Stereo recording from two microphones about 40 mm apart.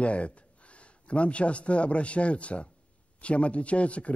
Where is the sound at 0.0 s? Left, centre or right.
Left.